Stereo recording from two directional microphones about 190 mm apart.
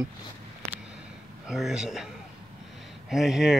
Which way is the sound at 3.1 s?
Centre (ahead or behind).